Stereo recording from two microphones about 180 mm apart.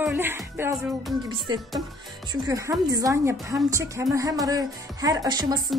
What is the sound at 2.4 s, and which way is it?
A woman's voice, 15° right (ahead or behind).